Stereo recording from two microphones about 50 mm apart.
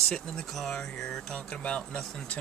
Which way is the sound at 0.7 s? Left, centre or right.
Centre.